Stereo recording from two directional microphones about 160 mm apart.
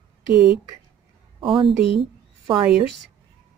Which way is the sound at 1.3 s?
30° right (ahead or behind).